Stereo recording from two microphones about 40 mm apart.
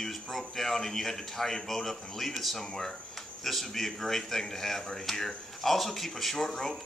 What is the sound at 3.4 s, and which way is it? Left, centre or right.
Speech, centre.